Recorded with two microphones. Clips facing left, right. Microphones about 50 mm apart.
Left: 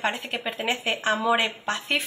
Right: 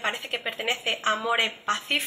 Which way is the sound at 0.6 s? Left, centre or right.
Left.